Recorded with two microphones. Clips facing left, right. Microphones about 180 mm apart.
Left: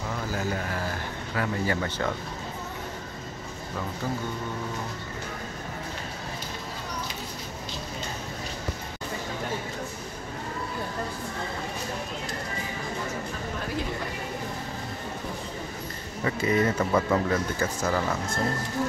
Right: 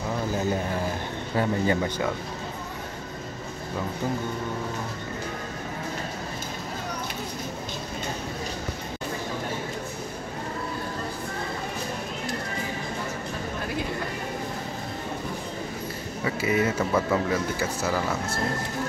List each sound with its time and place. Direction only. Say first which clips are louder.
0.3 s a sound: right 3 dB; 20° right (ahead or behind)
1.8 s speech: right 2 dB; 10° right (ahead or behind)
16.3 s speech: even; 5° right (ahead or behind)